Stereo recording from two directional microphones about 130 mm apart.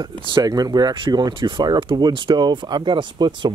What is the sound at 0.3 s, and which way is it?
Speech, 30° right (ahead or behind).